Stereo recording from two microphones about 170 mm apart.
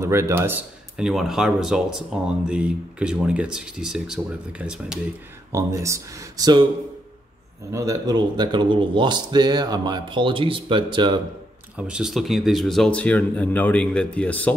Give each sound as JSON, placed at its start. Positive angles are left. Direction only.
{"t": 0.0, "sound": "speech", "side_deg": -15}
{"t": 5.5, "sound": "speech", "side_deg": -15}
{"t": 7.7, "sound": "speech", "side_deg": -20}
{"t": 11.7, "sound": "speech", "side_deg": -5}